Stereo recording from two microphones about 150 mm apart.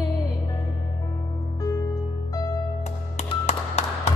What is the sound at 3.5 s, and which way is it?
Music, 45° left (ahead or behind).